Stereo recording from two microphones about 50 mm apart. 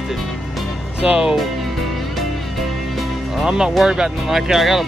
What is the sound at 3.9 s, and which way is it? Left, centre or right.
Speech, centre.